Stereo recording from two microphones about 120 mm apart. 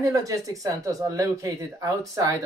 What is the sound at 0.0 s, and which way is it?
Speech, 30° right (ahead or behind).